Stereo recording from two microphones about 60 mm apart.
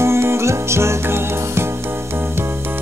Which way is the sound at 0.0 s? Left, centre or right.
Right.